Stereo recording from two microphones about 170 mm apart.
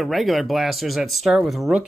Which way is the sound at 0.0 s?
Centre (ahead or behind).